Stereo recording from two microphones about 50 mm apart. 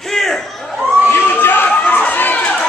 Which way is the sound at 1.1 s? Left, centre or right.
Left.